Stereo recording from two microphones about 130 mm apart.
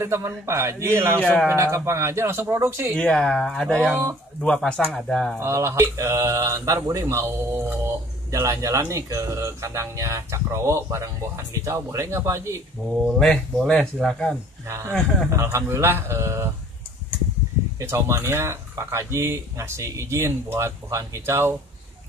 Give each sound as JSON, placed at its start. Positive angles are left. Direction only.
{"t": 0.0, "sound": "speech", "side_deg": -20}
{"t": 1.2, "sound": "speech", "side_deg": 5}
{"t": 1.5, "sound": "speech", "side_deg": -20}
{"t": 3.0, "sound": "speech", "side_deg": 5}
{"t": 3.9, "sound": "speech", "side_deg": -20}
{"t": 4.4, "sound": "speech", "side_deg": 5}
{"t": 5.4, "sound": "speech", "side_deg": -20}
{"t": 13.0, "sound": "speech", "side_deg": 5}
{"t": 15.2, "sound": "speech", "side_deg": -20}
{"t": 17.7, "sound": "speech", "side_deg": -20}